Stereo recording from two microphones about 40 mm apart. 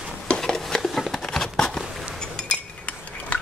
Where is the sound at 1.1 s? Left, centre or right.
Centre.